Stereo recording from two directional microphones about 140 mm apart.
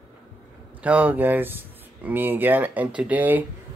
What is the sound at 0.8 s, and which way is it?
Speech, 10° right (ahead or behind).